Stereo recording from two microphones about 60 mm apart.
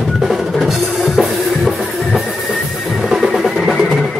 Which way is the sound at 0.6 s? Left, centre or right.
Centre.